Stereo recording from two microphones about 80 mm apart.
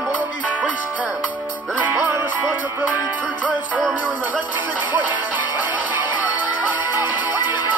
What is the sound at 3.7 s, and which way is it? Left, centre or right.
Music, centre.